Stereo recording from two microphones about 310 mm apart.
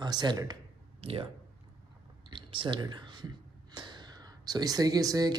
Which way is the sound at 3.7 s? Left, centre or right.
Centre.